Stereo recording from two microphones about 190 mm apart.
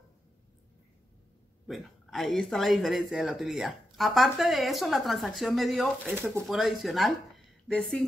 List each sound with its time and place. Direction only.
1.7 s a woman's voice: centre (ahead or behind)
6.1 s speech: 10° right (ahead or behind)